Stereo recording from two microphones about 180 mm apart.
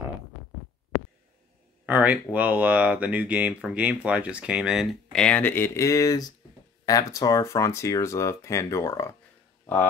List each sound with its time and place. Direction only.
1.9 s speech: 10° right (ahead or behind); by 9.1 s 15° left (ahead or behind)